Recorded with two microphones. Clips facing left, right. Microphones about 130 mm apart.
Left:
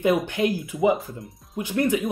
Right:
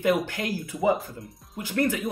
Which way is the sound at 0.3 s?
15° left (ahead or behind).